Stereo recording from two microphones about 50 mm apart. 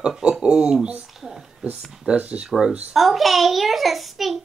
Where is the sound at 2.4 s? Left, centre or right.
Centre.